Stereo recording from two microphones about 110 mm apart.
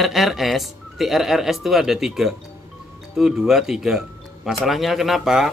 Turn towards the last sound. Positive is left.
turn(degrees=-5)  # may be behind; listen again after turning